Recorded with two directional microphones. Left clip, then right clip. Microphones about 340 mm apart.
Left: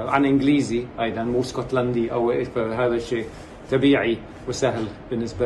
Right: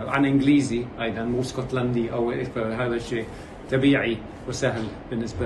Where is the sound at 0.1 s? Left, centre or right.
Centre.